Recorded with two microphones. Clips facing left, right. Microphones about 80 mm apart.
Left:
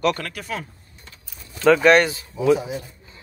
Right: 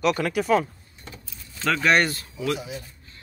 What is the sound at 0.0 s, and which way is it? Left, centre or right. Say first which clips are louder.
Speech: right 1 dB; centre.